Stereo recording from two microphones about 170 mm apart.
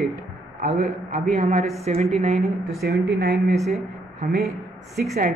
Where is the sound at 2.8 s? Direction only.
75° right (ahead or behind).